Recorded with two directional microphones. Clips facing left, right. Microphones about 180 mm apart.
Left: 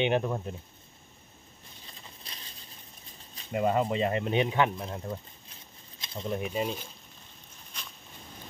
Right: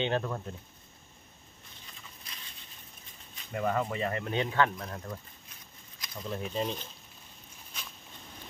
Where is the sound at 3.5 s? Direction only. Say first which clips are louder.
Left 4 dB; 20° left (ahead or behind).